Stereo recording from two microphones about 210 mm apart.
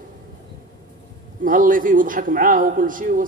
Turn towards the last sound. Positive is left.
turn(degrees=-40)  # may be behind; listen again after turning